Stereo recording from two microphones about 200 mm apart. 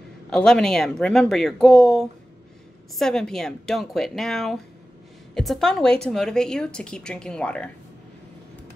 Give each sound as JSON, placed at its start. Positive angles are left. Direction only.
{"t": 0.3, "sound": "a woman's voice", "side_deg": 5}